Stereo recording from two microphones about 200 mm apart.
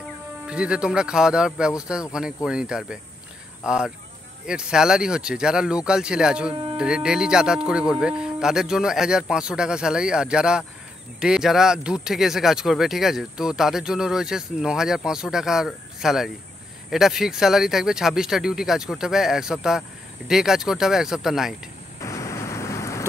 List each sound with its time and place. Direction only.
0.5 s speech: 5° right (ahead or behind)
6.5 s speech: 25° right (ahead or behind)
6.8 s speech: 5° right (ahead or behind)
22.0 s a sound: 15° left (ahead or behind)